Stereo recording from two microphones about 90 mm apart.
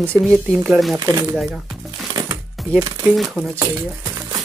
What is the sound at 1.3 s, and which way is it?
Music, 5° right (ahead or behind).